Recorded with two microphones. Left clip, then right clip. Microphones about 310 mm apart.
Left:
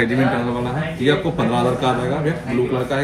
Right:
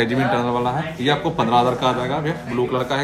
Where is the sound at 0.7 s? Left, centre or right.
Centre.